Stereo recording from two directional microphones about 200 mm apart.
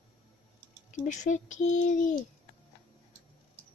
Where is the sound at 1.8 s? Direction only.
40° left (ahead or behind).